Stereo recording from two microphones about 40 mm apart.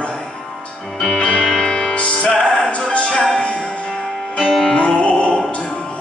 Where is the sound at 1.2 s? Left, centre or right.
Left.